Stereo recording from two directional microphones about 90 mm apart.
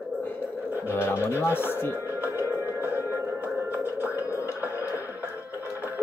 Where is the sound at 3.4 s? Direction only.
20° right (ahead or behind).